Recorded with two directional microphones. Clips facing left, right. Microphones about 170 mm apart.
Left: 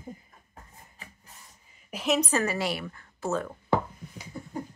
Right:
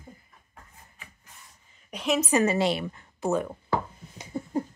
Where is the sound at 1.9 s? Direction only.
Centre (ahead or behind).